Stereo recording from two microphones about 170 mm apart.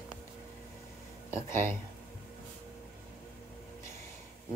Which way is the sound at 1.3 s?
15° left (ahead or behind).